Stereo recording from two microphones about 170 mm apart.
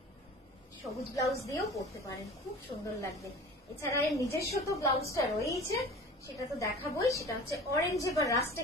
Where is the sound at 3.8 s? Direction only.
15° left (ahead or behind).